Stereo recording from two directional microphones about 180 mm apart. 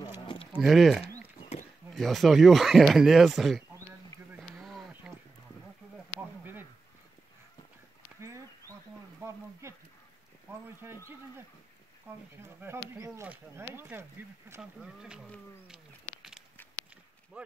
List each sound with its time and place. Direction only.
0.2 s livestock: 30° left (ahead or behind)
0.5 s speech: centre (ahead or behind)
4.4 s a sound: centre (ahead or behind)
8.2 s a sound: 15° right (ahead or behind)
12.4 s speech: 15° right (ahead or behind)
15.2 s cat: centre (ahead or behind)